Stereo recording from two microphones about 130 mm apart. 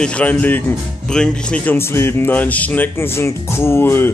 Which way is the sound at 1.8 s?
20° left (ahead or behind).